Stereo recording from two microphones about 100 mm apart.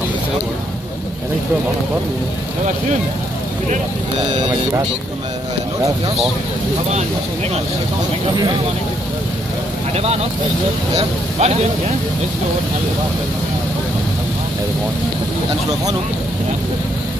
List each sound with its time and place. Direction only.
11.0 s speech: 90° right